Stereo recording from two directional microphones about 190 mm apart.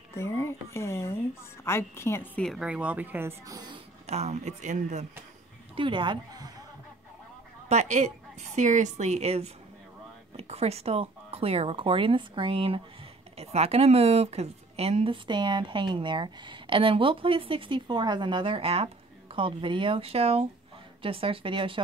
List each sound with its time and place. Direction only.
0.1 s a woman's voice: 15° left (ahead or behind); by 3.8 s 20° right (ahead or behind)
4.0 s a woman's voice: 35° right (ahead or behind)
5.8 s a woman's voice: 25° right (ahead or behind)
7.6 s a woman's voice: 40° right (ahead or behind)